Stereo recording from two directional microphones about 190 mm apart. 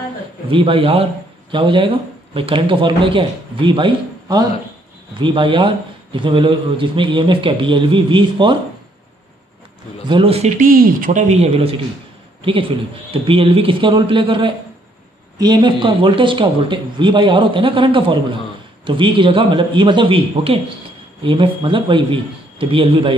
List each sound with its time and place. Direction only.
0.5 s a man's voice: 25° right (ahead or behind)
10.0 s a man's voice: 25° right (ahead or behind)
10.6 s a man's voice: 45° right (ahead or behind); by 23.1 s 30° right (ahead or behind)